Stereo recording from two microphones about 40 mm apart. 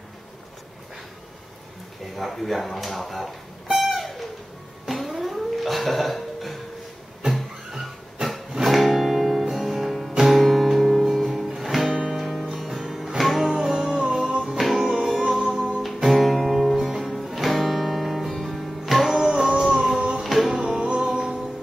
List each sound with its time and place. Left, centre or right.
2.1 s speech: centre
5.0 s music: centre
14.6 s music: centre
15.3 s music: centre
15.8 s guitar: centre
16.8 s music: centre
20.6 s music: right